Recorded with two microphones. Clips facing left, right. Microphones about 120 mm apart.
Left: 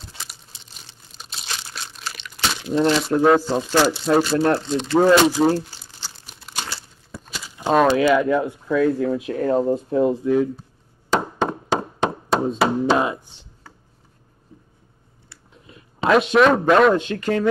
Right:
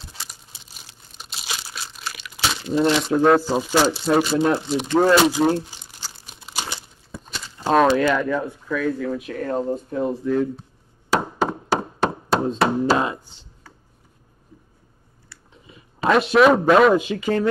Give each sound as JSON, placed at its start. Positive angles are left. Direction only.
{"t": 0.0, "sound": "crumpling", "side_deg": 0}
{"t": 3.8, "sound": "speech", "side_deg": 0}
{"t": 4.6, "sound": "speech", "side_deg": -10}
{"t": 5.9, "sound": "crumpling", "side_deg": -15}
{"t": 7.1, "sound": "a sound", "side_deg": 5}
{"t": 7.6, "sound": "speech", "side_deg": 0}
{"t": 10.0, "sound": "speech", "side_deg": 10}
{"t": 11.1, "sound": "chop", "side_deg": -5}
{"t": 12.0, "sound": "speech", "side_deg": 0}
{"t": 15.5, "sound": "a sound", "side_deg": 0}
{"t": 16.1, "sound": "speech", "side_deg": 0}